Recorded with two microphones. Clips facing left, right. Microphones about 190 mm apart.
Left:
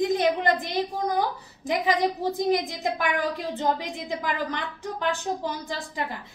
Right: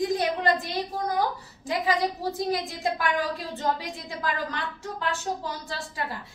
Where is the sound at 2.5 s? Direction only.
15° left (ahead or behind).